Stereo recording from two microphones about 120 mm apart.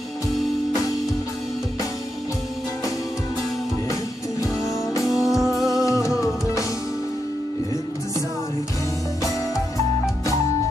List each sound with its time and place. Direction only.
5.0 s music: 5° right (ahead or behind)
5.8 s music: 25° left (ahead or behind)